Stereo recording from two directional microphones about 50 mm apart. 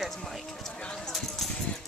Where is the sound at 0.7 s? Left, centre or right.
Centre.